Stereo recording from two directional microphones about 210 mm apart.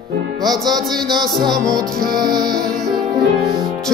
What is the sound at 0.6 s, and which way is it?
Music, 20° right (ahead or behind).